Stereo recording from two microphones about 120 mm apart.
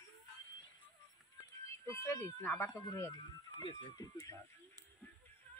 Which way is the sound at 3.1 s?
35° left (ahead or behind).